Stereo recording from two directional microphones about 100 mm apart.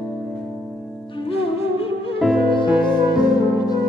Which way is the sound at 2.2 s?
5° right (ahead or behind).